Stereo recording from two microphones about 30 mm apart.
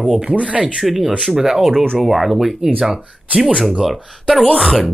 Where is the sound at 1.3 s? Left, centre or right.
Centre.